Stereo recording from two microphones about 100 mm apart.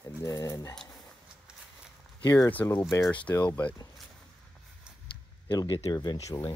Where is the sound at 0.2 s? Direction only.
30° left (ahead or behind).